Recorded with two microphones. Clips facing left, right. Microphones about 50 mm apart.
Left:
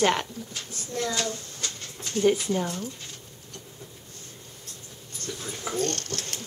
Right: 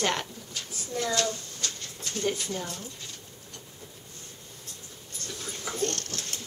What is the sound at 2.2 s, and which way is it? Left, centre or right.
Speech, centre.